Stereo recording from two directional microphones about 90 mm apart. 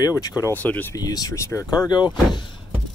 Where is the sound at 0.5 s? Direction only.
20° left (ahead or behind).